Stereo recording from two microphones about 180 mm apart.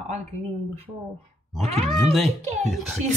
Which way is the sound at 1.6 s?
35° right (ahead or behind).